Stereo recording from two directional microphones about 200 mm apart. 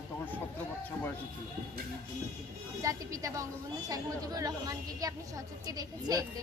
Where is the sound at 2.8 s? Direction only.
15° right (ahead or behind).